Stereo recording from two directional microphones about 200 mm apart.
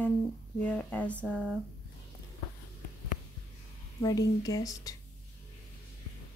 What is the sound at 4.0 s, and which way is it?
Speech, 20° left (ahead or behind).